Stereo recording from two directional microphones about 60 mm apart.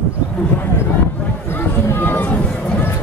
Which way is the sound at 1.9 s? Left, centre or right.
Left.